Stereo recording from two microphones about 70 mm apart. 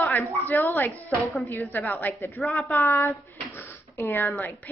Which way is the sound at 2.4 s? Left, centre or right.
Centre.